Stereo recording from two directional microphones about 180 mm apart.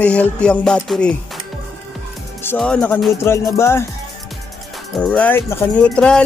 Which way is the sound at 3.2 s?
15° left (ahead or behind).